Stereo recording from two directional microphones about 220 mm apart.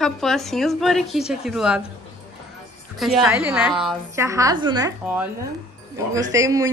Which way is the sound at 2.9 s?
Centre (ahead or behind).